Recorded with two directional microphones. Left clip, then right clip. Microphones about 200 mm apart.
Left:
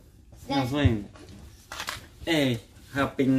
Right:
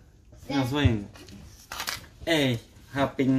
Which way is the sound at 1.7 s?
40° right (ahead or behind).